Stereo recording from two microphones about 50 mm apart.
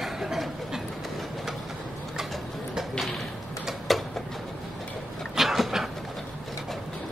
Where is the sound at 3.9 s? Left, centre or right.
Centre.